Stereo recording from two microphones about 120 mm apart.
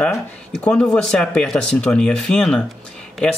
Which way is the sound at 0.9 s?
10° left (ahead or behind).